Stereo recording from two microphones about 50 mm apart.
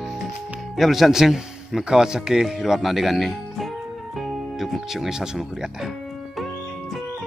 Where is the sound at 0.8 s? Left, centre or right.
Centre.